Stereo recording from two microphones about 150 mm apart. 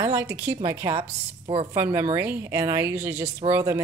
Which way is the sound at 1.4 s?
35° right (ahead or behind).